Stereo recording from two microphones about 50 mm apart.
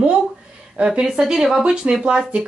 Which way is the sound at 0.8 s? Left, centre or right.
Centre.